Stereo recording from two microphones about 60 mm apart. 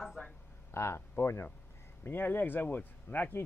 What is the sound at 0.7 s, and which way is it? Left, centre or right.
Speech, left.